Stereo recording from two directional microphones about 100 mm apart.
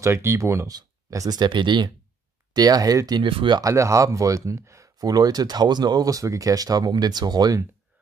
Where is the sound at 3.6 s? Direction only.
30° right (ahead or behind).